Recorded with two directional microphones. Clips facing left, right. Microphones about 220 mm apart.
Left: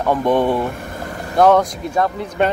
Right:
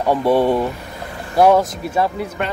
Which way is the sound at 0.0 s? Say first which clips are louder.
Right 1 dB; 10° right (ahead or behind).